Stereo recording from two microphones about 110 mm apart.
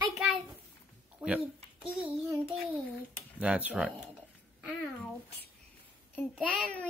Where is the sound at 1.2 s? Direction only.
10° right (ahead or behind).